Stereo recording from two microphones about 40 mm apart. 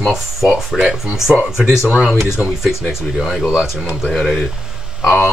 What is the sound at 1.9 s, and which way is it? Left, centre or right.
Speech, right.